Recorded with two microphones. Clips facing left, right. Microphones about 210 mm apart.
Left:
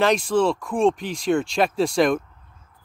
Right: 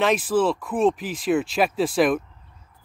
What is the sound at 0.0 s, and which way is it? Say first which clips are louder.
Speech: left 1 dB; 5° right (ahead or behind).